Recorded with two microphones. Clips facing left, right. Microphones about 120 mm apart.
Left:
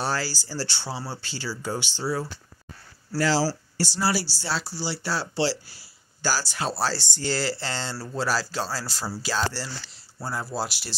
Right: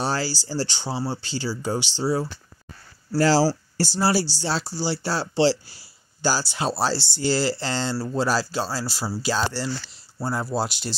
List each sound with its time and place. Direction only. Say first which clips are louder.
0.0 s speech: right 3 dB; 20° right (ahead or behind)
3.2 s speech: right 5 dB; 35° right (ahead or behind); by 11.0 s 20° right (ahead or behind)